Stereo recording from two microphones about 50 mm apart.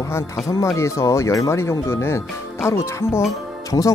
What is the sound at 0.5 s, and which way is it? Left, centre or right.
Speech, left.